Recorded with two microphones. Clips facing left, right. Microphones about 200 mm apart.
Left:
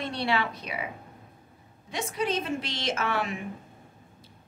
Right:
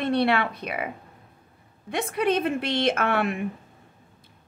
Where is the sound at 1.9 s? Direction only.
60° right (ahead or behind).